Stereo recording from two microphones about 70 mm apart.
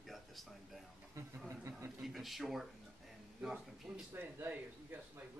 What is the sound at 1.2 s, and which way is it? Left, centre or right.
Speech, right.